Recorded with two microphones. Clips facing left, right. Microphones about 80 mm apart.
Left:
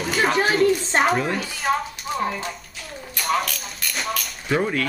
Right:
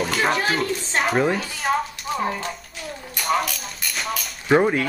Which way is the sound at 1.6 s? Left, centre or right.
Centre.